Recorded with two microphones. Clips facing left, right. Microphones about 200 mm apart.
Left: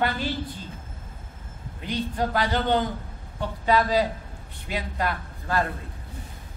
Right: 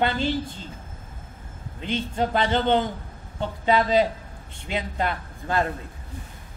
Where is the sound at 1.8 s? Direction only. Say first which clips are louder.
Right 1 dB; 25° right (ahead or behind).